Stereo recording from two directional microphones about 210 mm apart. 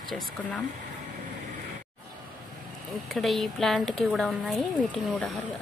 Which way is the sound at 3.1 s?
Centre (ahead or behind).